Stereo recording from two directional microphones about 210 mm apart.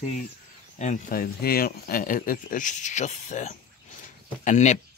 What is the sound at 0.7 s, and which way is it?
Speech, 35° left (ahead or behind).